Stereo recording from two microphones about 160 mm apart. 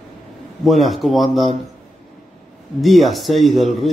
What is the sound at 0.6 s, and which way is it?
Speech, centre (ahead or behind).